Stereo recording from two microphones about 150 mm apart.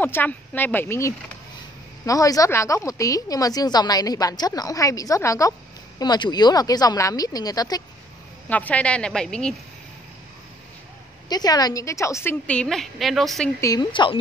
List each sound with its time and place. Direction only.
0.0 s a woman's voice: 15° left (ahead or behind)
8.5 s a woman's voice: 10° left (ahead or behind)
11.2 s a woman's voice: 25° left (ahead or behind); by 13.5 s centre (ahead or behind)
13.6 s a woman's voice: 25° left (ahead or behind)